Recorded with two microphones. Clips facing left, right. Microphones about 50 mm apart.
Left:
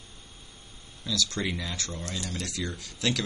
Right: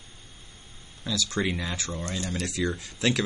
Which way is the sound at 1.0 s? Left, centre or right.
Centre.